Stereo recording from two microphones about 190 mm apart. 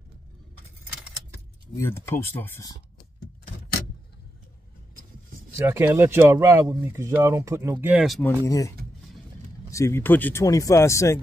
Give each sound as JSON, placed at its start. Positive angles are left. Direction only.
{"t": 1.8, "sound": "speech", "side_deg": 15}
{"t": 5.6, "sound": "speech", "side_deg": -10}
{"t": 8.2, "sound": "speech", "side_deg": 15}